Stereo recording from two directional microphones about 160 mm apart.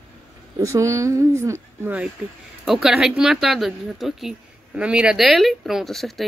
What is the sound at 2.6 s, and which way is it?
Speech, centre (ahead or behind).